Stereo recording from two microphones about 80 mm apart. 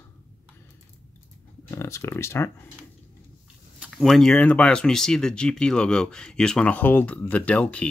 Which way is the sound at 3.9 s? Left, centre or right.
Centre.